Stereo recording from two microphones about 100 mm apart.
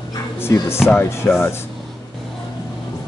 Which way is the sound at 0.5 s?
30° left (ahead or behind).